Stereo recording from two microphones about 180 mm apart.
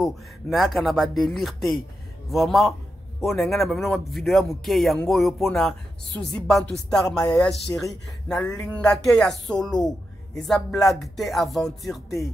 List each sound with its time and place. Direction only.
0.0 s speech: centre (ahead or behind)